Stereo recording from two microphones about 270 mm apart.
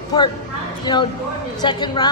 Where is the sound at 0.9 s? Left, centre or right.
Centre.